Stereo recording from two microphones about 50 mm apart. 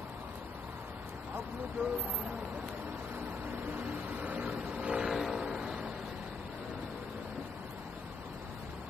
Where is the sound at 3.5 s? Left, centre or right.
Right.